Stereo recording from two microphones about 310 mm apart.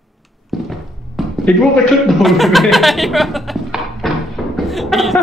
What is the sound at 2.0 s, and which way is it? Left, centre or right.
Speech, centre.